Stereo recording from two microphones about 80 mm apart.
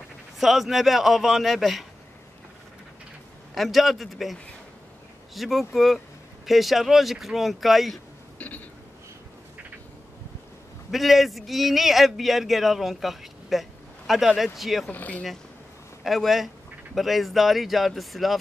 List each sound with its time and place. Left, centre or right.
0.4 s a man's voice: centre
3.5 s a man's voice: centre
8.4 s a sound: centre
10.9 s a man's voice: centre
14.9 s speech: centre
16.0 s a man's voice: centre